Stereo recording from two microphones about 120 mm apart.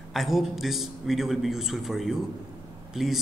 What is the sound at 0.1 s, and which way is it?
A man's voice, centre (ahead or behind).